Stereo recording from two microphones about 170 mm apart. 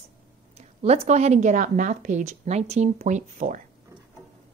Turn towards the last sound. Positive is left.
turn(degrees=-45)  # may be behind; listen again after turning